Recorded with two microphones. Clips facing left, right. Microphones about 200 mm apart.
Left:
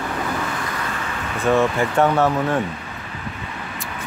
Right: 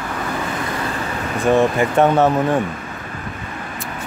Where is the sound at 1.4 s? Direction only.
15° right (ahead or behind).